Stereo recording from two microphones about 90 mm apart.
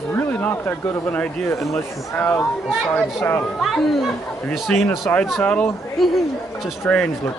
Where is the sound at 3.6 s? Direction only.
Centre (ahead or behind).